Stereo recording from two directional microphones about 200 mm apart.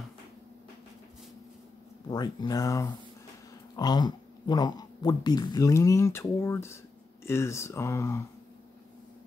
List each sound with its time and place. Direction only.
2.0 s speech: 20° left (ahead or behind)